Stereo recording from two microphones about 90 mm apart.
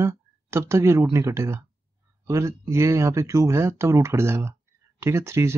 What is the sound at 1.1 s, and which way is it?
Speech, 30° right (ahead or behind).